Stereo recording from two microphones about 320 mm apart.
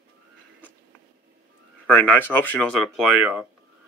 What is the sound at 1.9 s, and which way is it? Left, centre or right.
Speech, centre.